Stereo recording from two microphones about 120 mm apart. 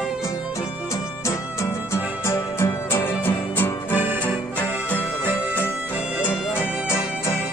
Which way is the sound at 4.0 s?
15° right (ahead or behind).